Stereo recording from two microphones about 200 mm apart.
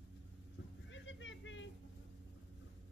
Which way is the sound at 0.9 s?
70° left (ahead or behind).